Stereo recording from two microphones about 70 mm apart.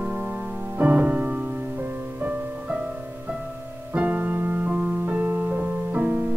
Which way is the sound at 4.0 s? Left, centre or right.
Right.